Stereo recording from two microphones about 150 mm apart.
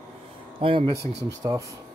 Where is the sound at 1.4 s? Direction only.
20° right (ahead or behind).